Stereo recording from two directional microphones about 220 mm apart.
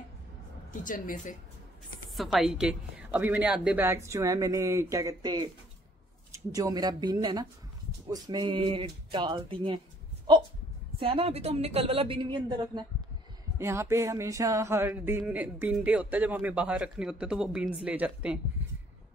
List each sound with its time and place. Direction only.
0.8 s speech: 35° left (ahead or behind)
2.1 s a woman's voice: centre (ahead or behind); by 9.8 s 25° right (ahead or behind)
11.0 s a woman's voice: 25° right (ahead or behind); by 18.4 s 5° right (ahead or behind)